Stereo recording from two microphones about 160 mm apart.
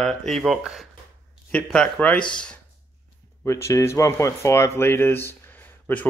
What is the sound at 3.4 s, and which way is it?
Speech, 20° left (ahead or behind).